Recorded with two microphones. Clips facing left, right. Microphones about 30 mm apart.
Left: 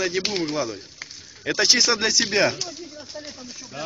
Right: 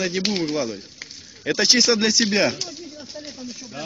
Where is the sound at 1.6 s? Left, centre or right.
Right.